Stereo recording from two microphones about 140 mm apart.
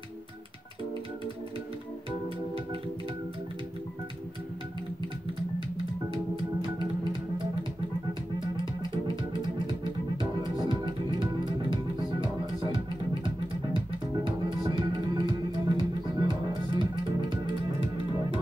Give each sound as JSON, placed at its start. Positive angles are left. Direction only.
{"t": 8.4, "sound": "music", "side_deg": -35}